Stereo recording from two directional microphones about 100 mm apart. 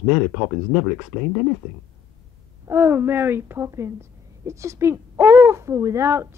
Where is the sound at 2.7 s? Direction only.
25° right (ahead or behind).